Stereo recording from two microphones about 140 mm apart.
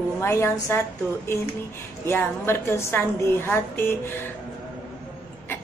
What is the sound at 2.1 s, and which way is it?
A woman's voice, 15° left (ahead or behind).